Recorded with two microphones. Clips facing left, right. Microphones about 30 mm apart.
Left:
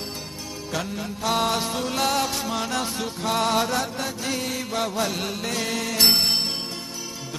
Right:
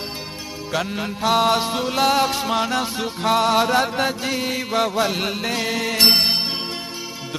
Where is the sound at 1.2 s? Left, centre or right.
Centre.